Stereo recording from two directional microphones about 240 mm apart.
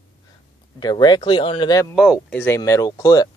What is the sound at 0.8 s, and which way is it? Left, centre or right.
Speech, centre.